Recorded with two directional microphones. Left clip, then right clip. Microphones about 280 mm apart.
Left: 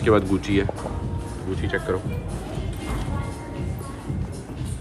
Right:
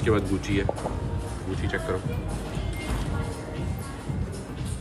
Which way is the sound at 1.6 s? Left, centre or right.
Centre.